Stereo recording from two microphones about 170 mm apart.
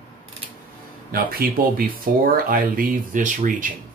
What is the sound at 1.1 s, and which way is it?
Speech, 60° right (ahead or behind).